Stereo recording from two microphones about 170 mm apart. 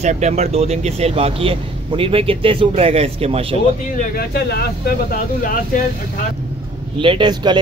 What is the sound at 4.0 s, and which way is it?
Speech, 65° left (ahead or behind).